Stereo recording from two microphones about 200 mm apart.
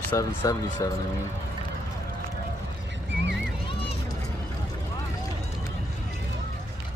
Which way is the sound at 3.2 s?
60° right (ahead or behind).